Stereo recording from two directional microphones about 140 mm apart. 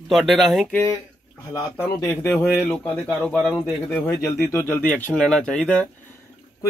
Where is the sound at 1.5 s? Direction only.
15° left (ahead or behind).